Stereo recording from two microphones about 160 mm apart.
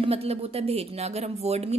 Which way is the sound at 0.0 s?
40° right (ahead or behind).